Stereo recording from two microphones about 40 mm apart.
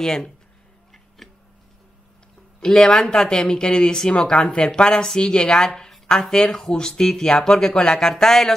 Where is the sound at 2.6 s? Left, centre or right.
Centre.